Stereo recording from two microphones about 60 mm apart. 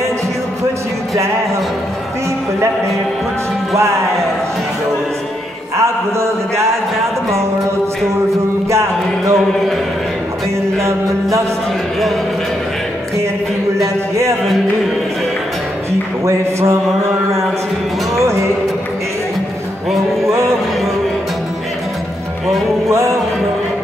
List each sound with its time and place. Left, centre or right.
5.8 s a man's voice: right
8.6 s music: right
16.3 s a man's voice: right
20.2 s music: right